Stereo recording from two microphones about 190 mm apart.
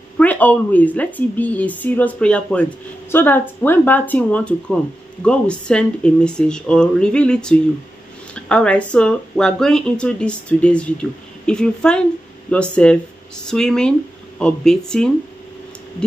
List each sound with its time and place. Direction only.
0.2 s a woman's voice: 10° left (ahead or behind)